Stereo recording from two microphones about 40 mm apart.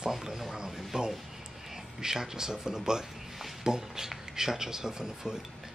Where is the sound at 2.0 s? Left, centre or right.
Centre.